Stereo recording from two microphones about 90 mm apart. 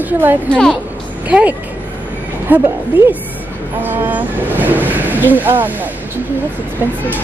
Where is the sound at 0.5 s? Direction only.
10° left (ahead or behind).